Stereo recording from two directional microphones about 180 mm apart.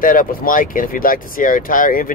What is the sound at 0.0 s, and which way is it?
Speech, 50° left (ahead or behind).